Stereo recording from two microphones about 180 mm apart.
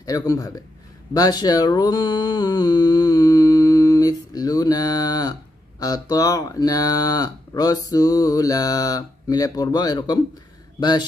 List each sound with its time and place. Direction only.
0.0 s speech: 20° left (ahead or behind)